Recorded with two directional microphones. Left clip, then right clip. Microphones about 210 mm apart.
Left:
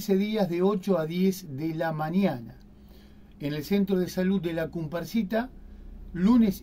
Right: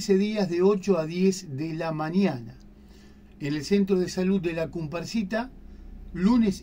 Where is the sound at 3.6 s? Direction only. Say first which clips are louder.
Right 3 dB; 30° left (ahead or behind).